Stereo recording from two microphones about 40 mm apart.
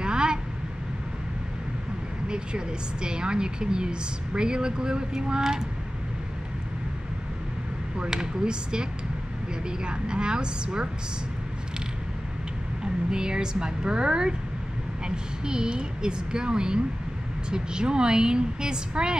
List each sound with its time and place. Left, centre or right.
0.0 s vehicle: right
2.2 s speech: right
8.1 s speech: centre
12.8 s speech: right